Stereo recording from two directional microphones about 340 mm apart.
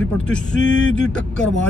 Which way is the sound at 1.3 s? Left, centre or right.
Left.